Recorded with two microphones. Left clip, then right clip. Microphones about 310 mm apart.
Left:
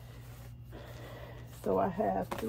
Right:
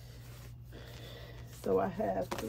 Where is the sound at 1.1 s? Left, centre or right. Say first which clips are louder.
Left 2 dB; centre.